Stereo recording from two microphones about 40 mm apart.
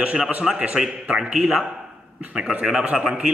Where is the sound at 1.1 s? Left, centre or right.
Centre.